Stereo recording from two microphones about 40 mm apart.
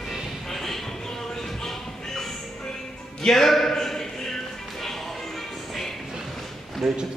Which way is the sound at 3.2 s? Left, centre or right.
Centre.